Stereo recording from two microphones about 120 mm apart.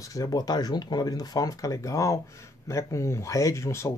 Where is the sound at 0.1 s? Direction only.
30° left (ahead or behind).